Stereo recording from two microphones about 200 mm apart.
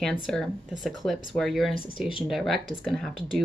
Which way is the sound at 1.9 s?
25° left (ahead or behind).